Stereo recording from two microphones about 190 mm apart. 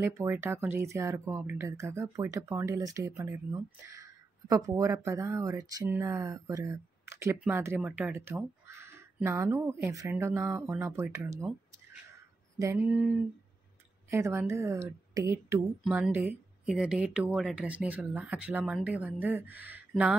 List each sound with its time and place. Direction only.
0.0 s speech: 15° right (ahead or behind)
12.5 s speech: 10° right (ahead or behind)
14.1 s speech: 15° right (ahead or behind)